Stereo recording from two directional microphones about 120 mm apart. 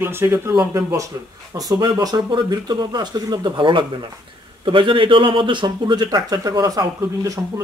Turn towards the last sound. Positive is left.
turn(degrees=-30)  # may be behind; listen again after turning